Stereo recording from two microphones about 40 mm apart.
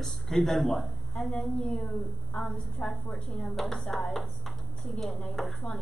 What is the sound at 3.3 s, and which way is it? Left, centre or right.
Speech, centre.